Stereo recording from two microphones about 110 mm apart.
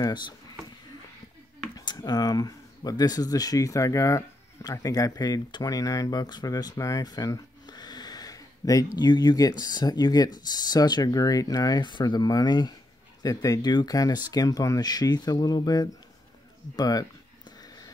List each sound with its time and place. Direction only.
0.0 s speech: 35° left (ahead or behind)
1.8 s speech: 35° left (ahead or behind)
16.7 s a sound: 35° left (ahead or behind)